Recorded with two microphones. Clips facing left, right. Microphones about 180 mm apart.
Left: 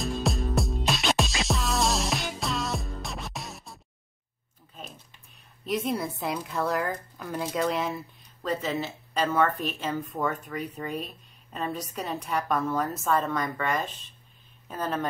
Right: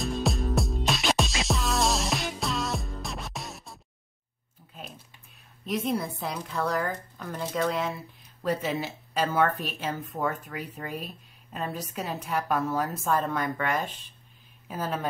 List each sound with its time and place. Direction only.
0.0 s music: centre (ahead or behind)
5.7 s a woman's voice: centre (ahead or behind)
8.4 s a woman's voice: 10° right (ahead or behind)